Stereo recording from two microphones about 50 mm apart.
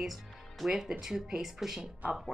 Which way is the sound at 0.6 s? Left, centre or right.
Centre.